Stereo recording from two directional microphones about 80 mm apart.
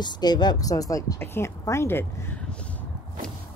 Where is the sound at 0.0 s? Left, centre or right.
Left.